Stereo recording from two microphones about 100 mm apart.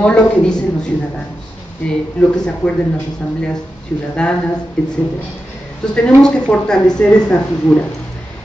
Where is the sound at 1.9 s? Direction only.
10° left (ahead or behind).